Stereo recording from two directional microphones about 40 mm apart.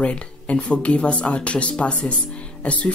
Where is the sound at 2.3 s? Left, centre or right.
Left.